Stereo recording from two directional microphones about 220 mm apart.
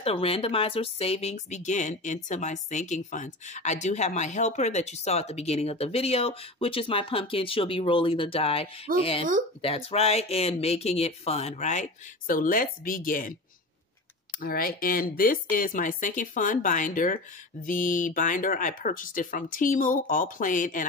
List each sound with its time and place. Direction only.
0.0 s speech: 25° left (ahead or behind)
14.4 s speech: 45° left (ahead or behind)